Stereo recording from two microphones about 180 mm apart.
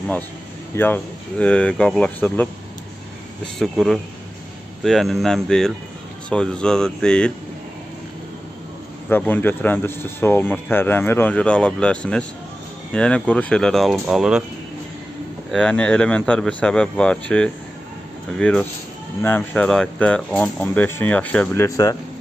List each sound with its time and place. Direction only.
0.7 s speech: 10° left (ahead or behind)
3.5 s speech: centre (ahead or behind)
9.1 s speech: 10° left (ahead or behind)
15.5 s speech: 5° left (ahead or behind)
21.6 s speech: 20° left (ahead or behind)